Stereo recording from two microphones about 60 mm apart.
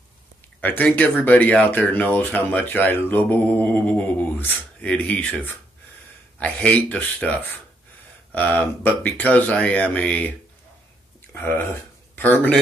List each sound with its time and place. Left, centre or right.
0.6 s speech: left
4.7 s speech: left
5.3 s speech: left
6.4 s speech: left
11.3 s speech: left